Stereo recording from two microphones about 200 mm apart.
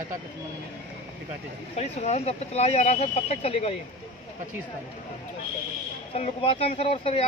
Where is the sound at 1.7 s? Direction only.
35° left (ahead or behind).